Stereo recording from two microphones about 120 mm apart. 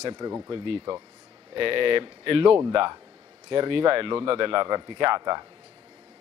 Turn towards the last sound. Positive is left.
turn(degrees=-35)  # may be behind; listen again after turning